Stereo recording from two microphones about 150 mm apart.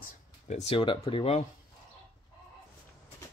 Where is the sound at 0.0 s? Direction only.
50° left (ahead or behind).